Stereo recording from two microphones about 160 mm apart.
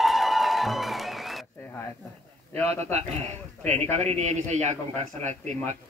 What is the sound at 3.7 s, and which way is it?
A man's voice, 45° right (ahead or behind).